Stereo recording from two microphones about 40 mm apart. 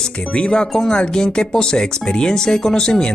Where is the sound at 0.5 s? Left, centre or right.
Centre.